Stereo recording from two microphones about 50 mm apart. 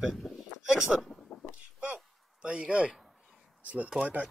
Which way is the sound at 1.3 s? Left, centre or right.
Left.